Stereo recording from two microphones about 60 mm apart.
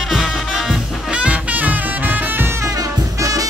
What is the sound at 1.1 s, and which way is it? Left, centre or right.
Music, right.